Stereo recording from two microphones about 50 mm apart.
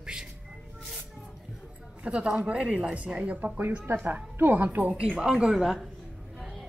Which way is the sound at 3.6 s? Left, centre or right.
Right.